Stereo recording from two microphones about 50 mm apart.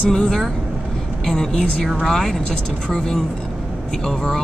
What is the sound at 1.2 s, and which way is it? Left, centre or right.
Speech, centre.